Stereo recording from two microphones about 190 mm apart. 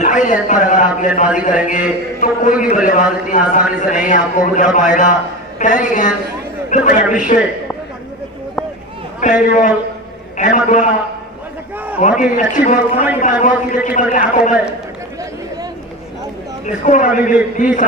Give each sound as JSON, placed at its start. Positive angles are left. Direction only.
{"t": 0.0, "sound": "a man's voice", "side_deg": 40}
{"t": 9.2, "sound": "speech", "side_deg": 40}
{"t": 12.0, "sound": "speech", "side_deg": 40}
{"t": 16.6, "sound": "speech", "side_deg": 40}